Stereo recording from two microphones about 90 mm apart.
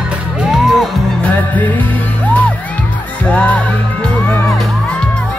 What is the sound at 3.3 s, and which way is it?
Music, 15° left (ahead or behind).